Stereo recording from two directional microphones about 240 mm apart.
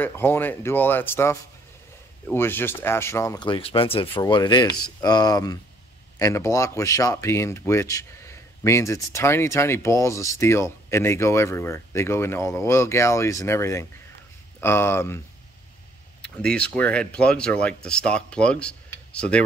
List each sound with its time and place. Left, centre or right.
0.0 s speech: centre